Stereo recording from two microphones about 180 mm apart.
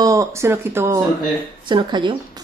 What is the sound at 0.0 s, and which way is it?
Speech, 20° right (ahead or behind).